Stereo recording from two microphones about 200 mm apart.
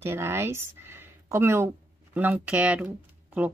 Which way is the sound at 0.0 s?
10° right (ahead or behind).